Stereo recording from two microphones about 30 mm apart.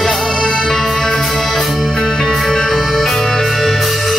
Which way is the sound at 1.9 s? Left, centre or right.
Centre.